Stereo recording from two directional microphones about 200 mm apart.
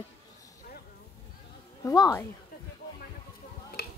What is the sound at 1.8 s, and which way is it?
Speech, 15° left (ahead or behind).